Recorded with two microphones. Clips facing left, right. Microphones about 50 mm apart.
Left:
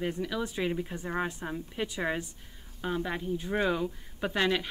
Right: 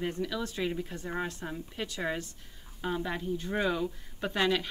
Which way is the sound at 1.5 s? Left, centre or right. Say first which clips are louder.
Left 3 dB; centre.